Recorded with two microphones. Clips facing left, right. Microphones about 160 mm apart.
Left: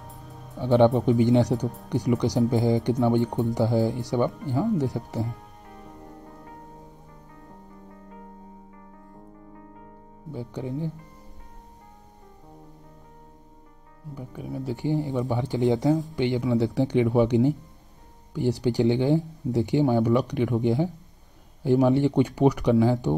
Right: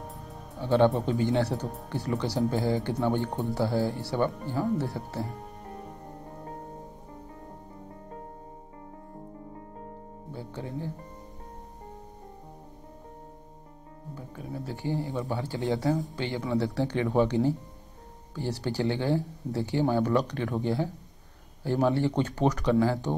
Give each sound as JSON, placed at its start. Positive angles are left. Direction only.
{"t": 0.1, "sound": "music", "side_deg": 0}
{"t": 0.6, "sound": "speech", "side_deg": 15}
{"t": 10.3, "sound": "speech", "side_deg": 15}
{"t": 14.1, "sound": "speech", "side_deg": 15}